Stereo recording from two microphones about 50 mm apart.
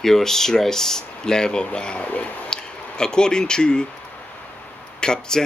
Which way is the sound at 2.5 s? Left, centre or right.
Centre.